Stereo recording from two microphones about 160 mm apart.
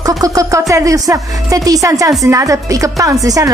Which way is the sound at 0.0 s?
20° right (ahead or behind).